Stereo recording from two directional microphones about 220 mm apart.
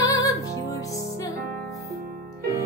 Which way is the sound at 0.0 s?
15° left (ahead or behind).